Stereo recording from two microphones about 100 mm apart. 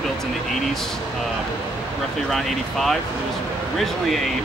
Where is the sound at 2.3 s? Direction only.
Centre (ahead or behind).